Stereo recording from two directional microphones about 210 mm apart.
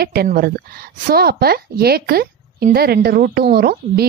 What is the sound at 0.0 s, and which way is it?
A woman's voice, 50° right (ahead or behind).